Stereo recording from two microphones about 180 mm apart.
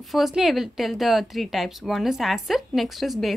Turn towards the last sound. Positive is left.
turn(degrees=0)  # may be behind; listen again after turning